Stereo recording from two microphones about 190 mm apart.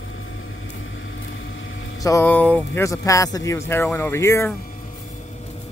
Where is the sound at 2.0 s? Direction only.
15° left (ahead or behind).